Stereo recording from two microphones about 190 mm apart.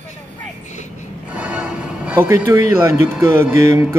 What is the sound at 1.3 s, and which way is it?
Music, 5° right (ahead or behind).